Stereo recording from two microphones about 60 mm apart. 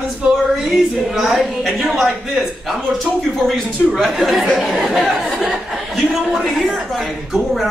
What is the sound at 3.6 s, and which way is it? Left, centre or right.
Speech, right.